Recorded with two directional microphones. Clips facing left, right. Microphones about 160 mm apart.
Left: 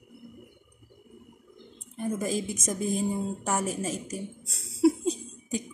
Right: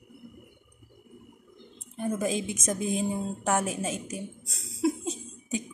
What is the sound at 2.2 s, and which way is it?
A woman's voice, centre (ahead or behind).